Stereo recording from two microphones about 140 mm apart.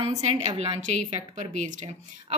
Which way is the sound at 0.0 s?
50° right (ahead or behind).